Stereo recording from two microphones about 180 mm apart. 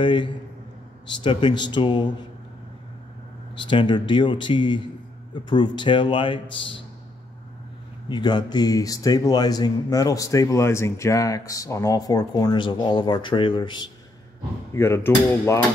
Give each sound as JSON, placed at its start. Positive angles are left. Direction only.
{"t": 0.0, "sound": "speech", "side_deg": 25}
{"t": 3.6, "sound": "speech", "side_deg": 25}
{"t": 8.1, "sound": "speech", "side_deg": 25}
{"t": 14.7, "sound": "hammer", "side_deg": 15}